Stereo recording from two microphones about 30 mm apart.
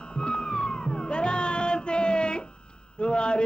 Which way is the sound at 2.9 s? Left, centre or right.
Left.